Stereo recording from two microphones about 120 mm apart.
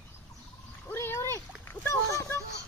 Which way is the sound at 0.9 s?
20° left (ahead or behind).